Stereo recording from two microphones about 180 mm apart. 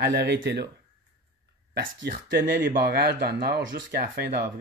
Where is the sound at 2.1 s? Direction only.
65° right (ahead or behind).